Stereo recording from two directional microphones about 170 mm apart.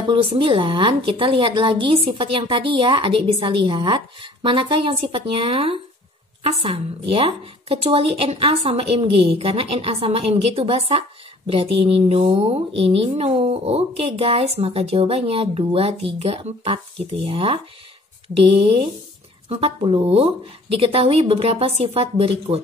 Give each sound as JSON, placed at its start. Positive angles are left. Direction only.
{"t": 0.1, "sound": "a woman's voice", "side_deg": -30}